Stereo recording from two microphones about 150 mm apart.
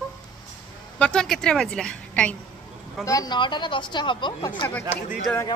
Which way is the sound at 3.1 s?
25° left (ahead or behind).